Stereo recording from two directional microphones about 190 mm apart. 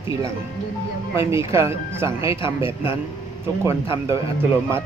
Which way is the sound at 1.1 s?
15° right (ahead or behind).